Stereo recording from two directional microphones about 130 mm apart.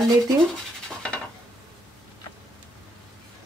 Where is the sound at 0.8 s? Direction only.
5° left (ahead or behind).